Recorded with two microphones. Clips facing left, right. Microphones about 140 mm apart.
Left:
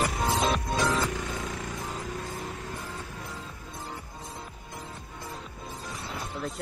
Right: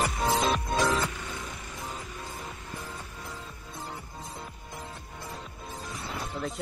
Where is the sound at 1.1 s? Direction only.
90° left.